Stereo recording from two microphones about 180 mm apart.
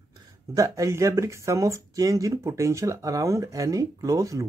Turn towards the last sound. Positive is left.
turn(degrees=-20)  # may be behind; listen again after turning